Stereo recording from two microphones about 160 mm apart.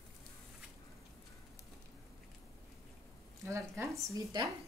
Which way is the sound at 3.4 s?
20° right (ahead or behind).